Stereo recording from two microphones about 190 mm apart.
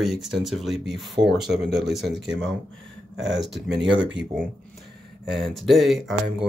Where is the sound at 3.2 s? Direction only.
65° right (ahead or behind).